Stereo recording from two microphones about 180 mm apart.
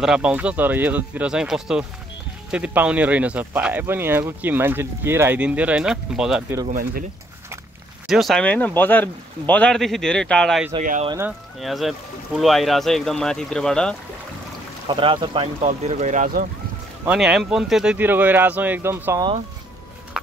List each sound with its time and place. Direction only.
0.0 s speech: 5° right (ahead or behind)
6.7 s speech: 50° right (ahead or behind)
8.1 s speech: centre (ahead or behind)
10.8 s speech: 45° right (ahead or behind)
11.6 s speech: centre (ahead or behind)
14.9 s speech: 30° right (ahead or behind); by 16.4 s 45° right (ahead or behind)
17.0 s speech: 5° right (ahead or behind)